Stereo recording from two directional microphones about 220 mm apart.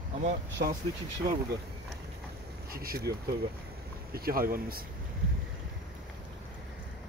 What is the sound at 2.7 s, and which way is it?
Speech, 45° right (ahead or behind).